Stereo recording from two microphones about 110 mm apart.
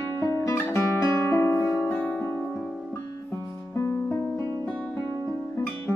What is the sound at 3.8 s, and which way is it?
Music, 20° left (ahead or behind).